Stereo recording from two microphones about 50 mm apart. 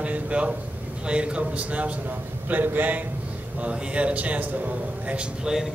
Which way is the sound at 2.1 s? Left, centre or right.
Right.